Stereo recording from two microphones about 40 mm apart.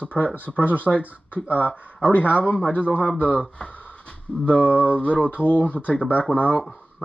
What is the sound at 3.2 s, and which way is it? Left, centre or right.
Speech, right.